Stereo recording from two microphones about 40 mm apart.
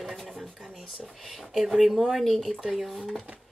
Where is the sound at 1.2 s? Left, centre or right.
Centre.